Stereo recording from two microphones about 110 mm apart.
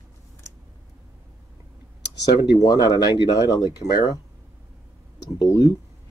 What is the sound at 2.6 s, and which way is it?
Speech, 40° left (ahead or behind).